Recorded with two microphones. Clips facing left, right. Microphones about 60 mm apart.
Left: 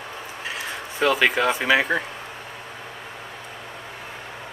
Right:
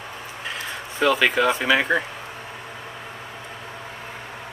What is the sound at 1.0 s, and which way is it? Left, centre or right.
Speech, centre.